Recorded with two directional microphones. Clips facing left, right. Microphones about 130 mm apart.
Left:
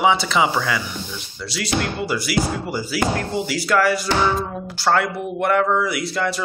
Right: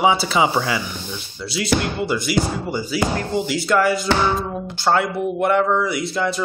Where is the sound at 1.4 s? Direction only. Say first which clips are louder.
Right 3 dB; centre (ahead or behind).